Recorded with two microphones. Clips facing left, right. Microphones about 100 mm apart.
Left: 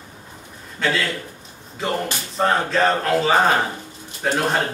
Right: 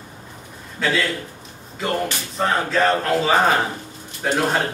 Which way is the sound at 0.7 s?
Centre (ahead or behind).